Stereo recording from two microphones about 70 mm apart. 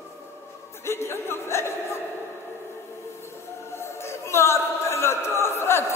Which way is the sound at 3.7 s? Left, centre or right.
Left.